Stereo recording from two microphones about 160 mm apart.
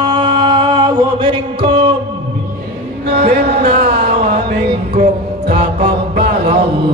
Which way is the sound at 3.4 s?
65° right (ahead or behind).